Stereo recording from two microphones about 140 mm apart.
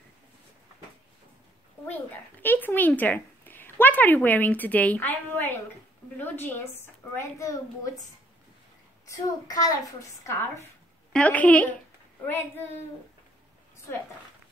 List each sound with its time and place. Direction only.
2.4 s a sound: 15° left (ahead or behind)
6.1 s a woman's voice: 15° left (ahead or behind)
9.0 s a woman's voice: 25° left (ahead or behind)
11.1 s a woman's voice: 10° left (ahead or behind)